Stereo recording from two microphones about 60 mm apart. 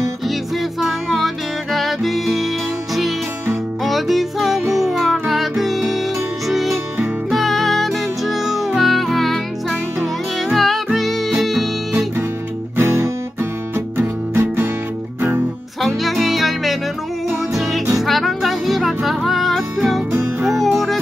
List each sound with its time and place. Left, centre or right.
0.7 s music: centre
3.8 s music: centre
12.7 s music: right
15.8 s music: centre